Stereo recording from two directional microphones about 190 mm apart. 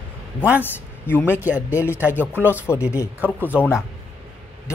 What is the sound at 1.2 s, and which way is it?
Speech, 10° right (ahead or behind).